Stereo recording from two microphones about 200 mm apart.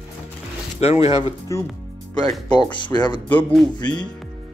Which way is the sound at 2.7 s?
25° left (ahead or behind).